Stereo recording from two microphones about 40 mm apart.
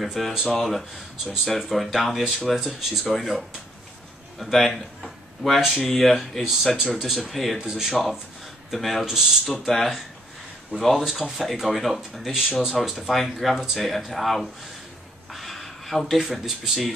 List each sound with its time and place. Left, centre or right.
0.0 s speech: centre
1.1 s speech: right
1.6 s speech: centre
7.5 s speech: centre
9.0 s speech: centre
9.7 s speech: centre